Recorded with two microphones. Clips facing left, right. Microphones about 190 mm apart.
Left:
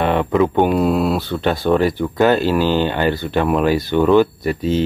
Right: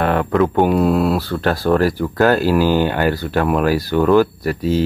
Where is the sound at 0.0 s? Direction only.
Centre (ahead or behind).